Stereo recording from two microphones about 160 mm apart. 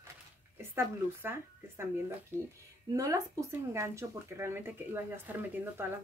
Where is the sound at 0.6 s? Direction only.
15° right (ahead or behind).